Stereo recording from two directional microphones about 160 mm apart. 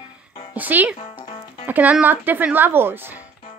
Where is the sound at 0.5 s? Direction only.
10° right (ahead or behind).